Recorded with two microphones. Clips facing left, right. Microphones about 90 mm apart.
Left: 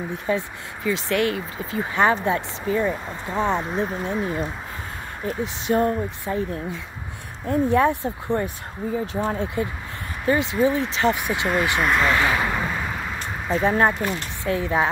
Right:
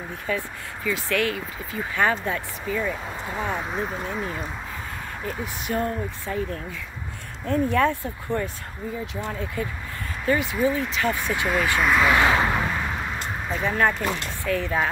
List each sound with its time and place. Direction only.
0.3 s speech: 25° left (ahead or behind)
3.6 s speech: centre (ahead or behind)
5.4 s speech: 25° left (ahead or behind)
9.0 s speech: 35° left (ahead or behind)
10.2 s speech: 20° left (ahead or behind)
11.8 s speech: centre (ahead or behind)
12.1 s speech: 20° right (ahead or behind)
12.4 s vehicle: centre (ahead or behind)
13.5 s speech: 35° left (ahead or behind)
13.8 s speech: 20° left (ahead or behind)